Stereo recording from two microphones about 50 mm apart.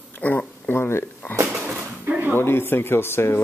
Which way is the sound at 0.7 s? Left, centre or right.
Left.